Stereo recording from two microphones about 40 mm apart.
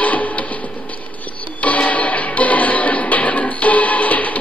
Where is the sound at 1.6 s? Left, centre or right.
Left.